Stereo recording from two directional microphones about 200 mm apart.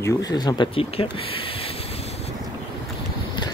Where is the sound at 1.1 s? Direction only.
25° left (ahead or behind).